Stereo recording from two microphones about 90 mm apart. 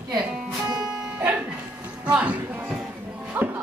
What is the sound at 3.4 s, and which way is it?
Music, 20° right (ahead or behind).